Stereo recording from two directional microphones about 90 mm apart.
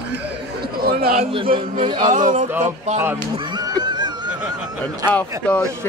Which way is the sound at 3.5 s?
50° right (ahead or behind).